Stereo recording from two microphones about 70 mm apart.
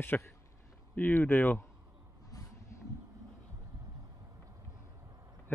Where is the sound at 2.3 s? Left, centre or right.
Left.